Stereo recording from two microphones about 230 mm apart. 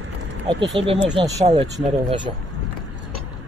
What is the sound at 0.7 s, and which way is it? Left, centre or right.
Speech, right.